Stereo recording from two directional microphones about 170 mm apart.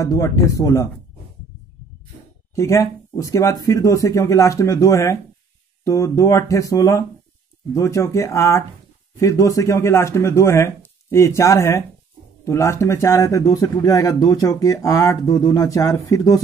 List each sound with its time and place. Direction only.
0.0 s speech: 20° left (ahead or behind)
2.5 s speech: 15° left (ahead or behind)